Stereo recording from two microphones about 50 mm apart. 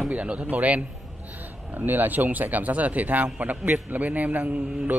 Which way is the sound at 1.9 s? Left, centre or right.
Right.